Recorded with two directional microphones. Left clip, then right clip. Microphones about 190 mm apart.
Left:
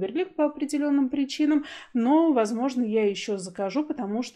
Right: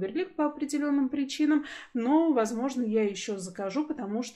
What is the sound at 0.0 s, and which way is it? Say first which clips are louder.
Speech: left 4 dB; 25° left (ahead or behind).